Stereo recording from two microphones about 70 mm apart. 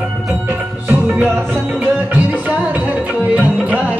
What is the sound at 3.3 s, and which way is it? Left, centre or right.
Music, right.